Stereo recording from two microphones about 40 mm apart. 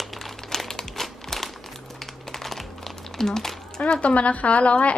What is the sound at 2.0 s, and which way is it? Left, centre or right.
Typing, centre.